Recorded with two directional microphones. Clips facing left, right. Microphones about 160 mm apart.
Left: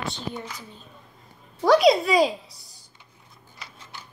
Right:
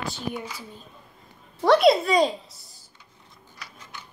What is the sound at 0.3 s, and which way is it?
A child's voice, 10° right (ahead or behind).